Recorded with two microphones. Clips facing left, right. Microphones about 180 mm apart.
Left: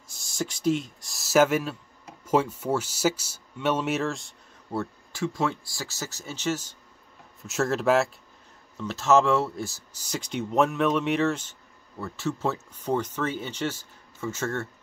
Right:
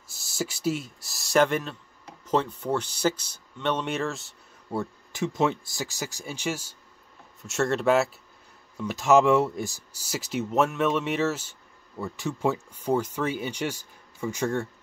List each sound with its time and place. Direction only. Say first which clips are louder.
0.1 s speech: even; 5° right (ahead or behind)
4.7 s speech: right 1 dB; 20° right (ahead or behind)
7.4 s a man's voice: even; centre (ahead or behind)
8.7 s speech: right 1 dB; 15° right (ahead or behind)